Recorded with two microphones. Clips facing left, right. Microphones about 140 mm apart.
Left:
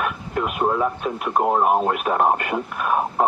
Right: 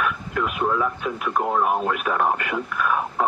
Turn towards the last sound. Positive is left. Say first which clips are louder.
# left 2 dB
turn(degrees=40)  # may be behind; listen again after turning